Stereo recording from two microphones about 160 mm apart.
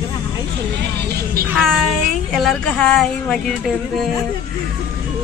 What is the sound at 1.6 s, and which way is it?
Speech, 5° left (ahead or behind).